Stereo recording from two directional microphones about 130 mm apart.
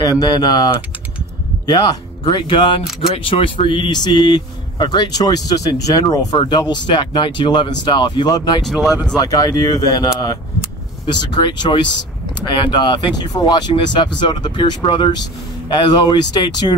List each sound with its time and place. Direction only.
0.2 s speech: 35° left (ahead or behind)
8.6 s speech: centre (ahead or behind)
9.1 s speech: 30° left (ahead or behind)
11.3 s speech: 35° left (ahead or behind)